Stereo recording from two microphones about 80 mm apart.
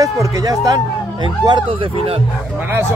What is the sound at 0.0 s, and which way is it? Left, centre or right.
Speech, right.